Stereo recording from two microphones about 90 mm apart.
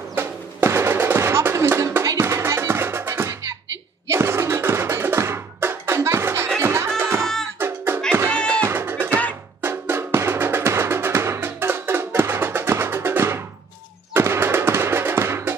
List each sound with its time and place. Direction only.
0.1 s music: 25° right (ahead or behind)
8.3 s music: 10° left (ahead or behind)
8.6 s music: 25° right (ahead or behind)
9.6 s drum: 25° right (ahead or behind)
14.1 s music: 30° right (ahead or behind)